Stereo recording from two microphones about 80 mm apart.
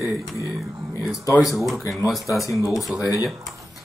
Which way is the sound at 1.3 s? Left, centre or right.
Left.